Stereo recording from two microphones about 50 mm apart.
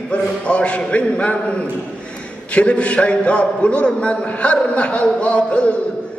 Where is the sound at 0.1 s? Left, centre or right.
Left.